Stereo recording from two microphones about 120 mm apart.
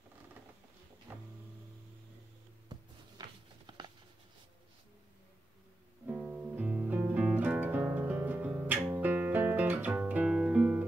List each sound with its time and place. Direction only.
1.1 s music: 15° right (ahead or behind)
2.7 s a sound: 40° right (ahead or behind)
6.0 s music: 10° right (ahead or behind)